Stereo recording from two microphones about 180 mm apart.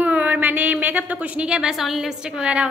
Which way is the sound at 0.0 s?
10° right (ahead or behind).